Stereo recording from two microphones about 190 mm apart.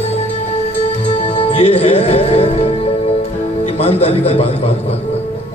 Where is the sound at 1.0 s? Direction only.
35° left (ahead or behind).